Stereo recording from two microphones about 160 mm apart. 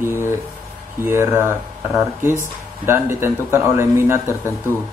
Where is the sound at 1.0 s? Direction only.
15° right (ahead or behind).